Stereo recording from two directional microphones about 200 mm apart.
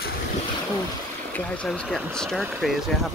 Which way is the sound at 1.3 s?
5° left (ahead or behind).